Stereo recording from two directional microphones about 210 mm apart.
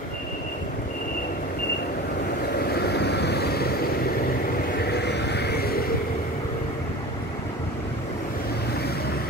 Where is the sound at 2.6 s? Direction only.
50° left (ahead or behind).